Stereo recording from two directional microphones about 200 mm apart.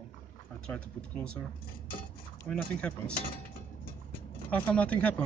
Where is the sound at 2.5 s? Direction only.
5° left (ahead or behind).